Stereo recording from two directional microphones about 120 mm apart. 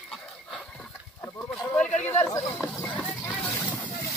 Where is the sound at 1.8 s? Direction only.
10° left (ahead or behind).